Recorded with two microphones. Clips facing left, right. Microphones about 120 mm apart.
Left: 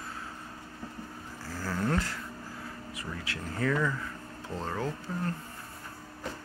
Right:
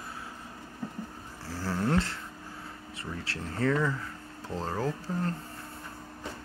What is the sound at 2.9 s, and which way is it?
Speech, 30° right (ahead or behind).